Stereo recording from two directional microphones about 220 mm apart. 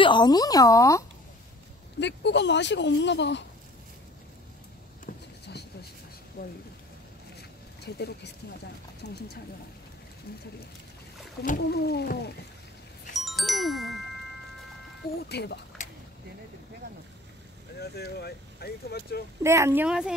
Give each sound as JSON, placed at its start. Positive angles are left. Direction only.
{"t": 0.0, "sound": "speech", "side_deg": 20}
{"t": 2.0, "sound": "speech", "side_deg": 50}
{"t": 5.0, "sound": "a sound", "side_deg": 50}
{"t": 6.4, "sound": "speech", "side_deg": 45}
{"t": 7.8, "sound": "speech", "side_deg": 50}
{"t": 11.4, "sound": "speech", "side_deg": 45}
{"t": 13.2, "sound": "music", "side_deg": 0}
{"t": 15.2, "sound": "speech", "side_deg": 50}
{"t": 17.7, "sound": "speech", "side_deg": 45}
{"t": 19.4, "sound": "speech", "side_deg": -10}